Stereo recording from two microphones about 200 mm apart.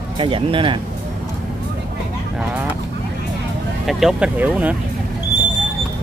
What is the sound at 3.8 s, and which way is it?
Speech, 5° right (ahead or behind).